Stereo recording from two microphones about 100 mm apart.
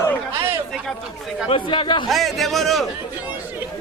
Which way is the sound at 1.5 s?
55° left (ahead or behind).